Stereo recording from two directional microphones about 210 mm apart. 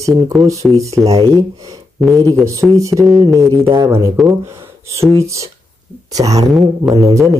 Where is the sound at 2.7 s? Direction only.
15° right (ahead or behind).